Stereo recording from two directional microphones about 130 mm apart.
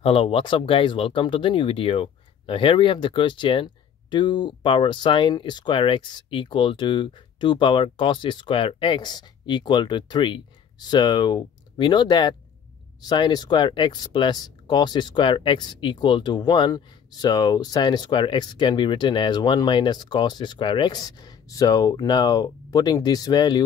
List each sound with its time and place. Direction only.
0.0 s speech: 45° left (ahead or behind)